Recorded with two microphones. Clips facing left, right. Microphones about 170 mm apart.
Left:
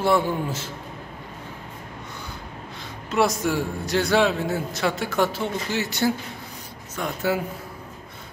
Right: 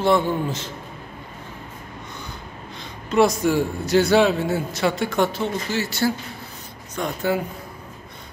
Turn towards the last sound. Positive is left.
turn(degrees=5)  # may be behind; listen again after turning